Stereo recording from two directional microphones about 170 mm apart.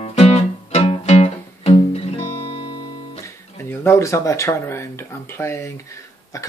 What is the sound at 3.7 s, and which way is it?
Speech, 15° left (ahead or behind).